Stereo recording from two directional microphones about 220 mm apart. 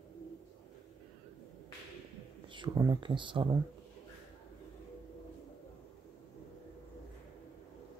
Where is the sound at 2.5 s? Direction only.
20° right (ahead or behind).